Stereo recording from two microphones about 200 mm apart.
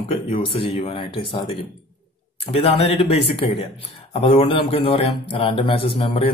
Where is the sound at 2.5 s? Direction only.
30° left (ahead or behind).